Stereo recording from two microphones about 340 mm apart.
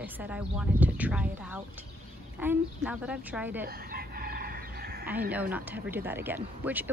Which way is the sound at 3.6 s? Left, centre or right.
Right.